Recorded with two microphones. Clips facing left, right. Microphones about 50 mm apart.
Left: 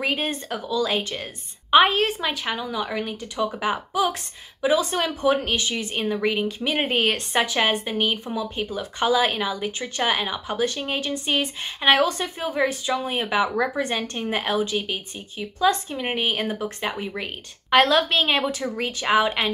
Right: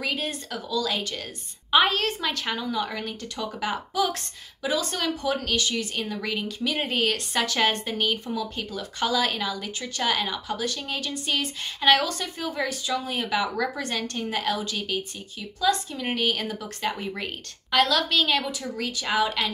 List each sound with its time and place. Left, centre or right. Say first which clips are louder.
0.0 s speech: left 4 dB; left
7.4 s speech: left 2 dB; centre
17.6 s speech: left 5 dB; left